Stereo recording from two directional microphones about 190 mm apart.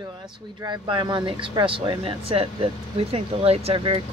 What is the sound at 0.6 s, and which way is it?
Speech, 20° right (ahead or behind).